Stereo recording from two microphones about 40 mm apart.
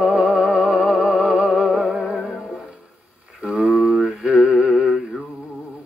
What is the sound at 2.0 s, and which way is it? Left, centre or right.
Music, centre.